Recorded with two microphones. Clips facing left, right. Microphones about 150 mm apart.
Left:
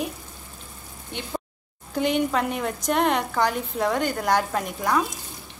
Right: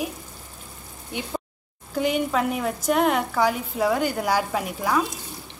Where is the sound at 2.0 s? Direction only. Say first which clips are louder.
Even; 5° right (ahead or behind).